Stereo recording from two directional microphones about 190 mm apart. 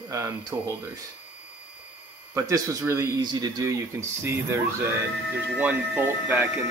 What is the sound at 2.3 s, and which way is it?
Speech, 15° right (ahead or behind).